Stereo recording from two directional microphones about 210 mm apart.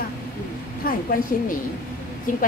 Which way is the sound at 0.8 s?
40° left (ahead or behind).